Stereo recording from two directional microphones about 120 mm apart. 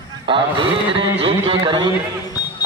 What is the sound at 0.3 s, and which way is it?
A man's voice, 45° right (ahead or behind).